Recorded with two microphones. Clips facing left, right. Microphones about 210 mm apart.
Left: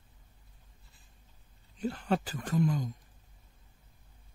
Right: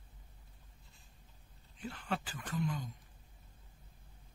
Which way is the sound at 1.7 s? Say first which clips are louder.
Left 9 dB; 40° left (ahead or behind).